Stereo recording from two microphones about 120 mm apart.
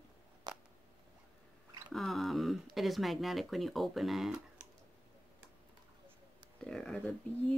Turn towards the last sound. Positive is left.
turn(degrees=5)  # may be behind; listen again after turning